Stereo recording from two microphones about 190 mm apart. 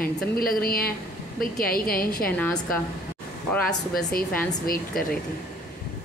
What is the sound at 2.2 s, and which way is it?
Speech, 5° left (ahead or behind).